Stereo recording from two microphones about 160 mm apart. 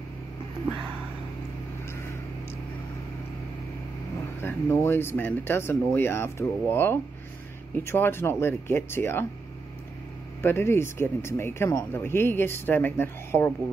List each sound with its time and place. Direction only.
4.4 s speech: 15° left (ahead or behind)
10.4 s speech: 15° left (ahead or behind)